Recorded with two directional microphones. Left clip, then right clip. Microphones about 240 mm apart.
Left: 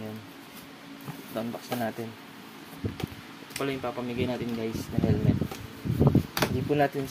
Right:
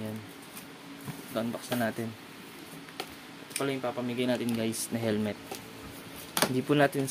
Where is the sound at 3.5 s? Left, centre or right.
Centre.